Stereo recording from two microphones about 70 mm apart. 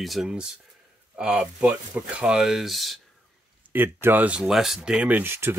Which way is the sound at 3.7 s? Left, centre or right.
Right.